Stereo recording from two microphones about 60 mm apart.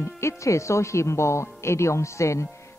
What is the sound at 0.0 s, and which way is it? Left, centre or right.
A woman's voice, left.